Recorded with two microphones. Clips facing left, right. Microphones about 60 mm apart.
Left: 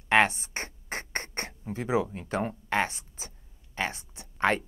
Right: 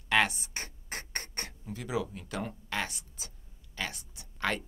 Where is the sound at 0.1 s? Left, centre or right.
Left.